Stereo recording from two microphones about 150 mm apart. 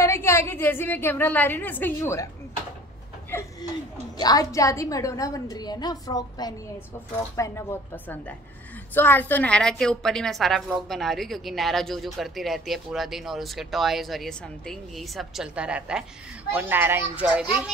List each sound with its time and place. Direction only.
0.0 s a woman's voice: 15° left (ahead or behind)
3.3 s a woman's voice: 15° left (ahead or behind)
4.2 s a woman's voice: 25° left (ahead or behind); by 17.7 s 5° right (ahead or behind)